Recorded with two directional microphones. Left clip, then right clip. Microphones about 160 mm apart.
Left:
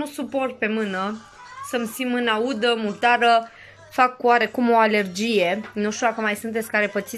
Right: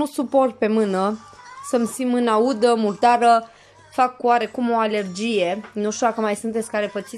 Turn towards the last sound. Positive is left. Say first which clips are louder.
# left 1 dB
turn(degrees=-15)  # may be behind; listen again after turning